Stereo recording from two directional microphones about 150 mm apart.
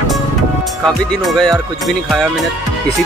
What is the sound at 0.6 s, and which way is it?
Speech, centre (ahead or behind).